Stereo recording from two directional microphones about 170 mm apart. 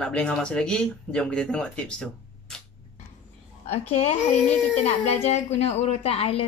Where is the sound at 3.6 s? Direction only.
40° left (ahead or behind).